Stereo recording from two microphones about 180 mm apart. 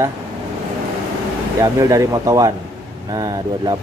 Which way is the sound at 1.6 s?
20° right (ahead or behind).